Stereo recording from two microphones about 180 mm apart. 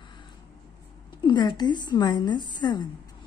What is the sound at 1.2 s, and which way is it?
Speech, 25° left (ahead or behind).